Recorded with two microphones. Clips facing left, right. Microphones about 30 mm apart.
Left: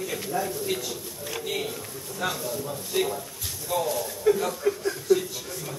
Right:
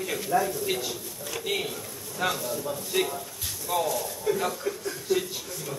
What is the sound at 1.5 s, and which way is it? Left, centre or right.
A man's voice, centre.